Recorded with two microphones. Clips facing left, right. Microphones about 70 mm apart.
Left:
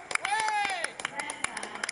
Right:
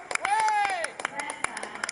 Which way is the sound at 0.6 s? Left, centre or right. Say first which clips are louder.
Right 4 dB; centre.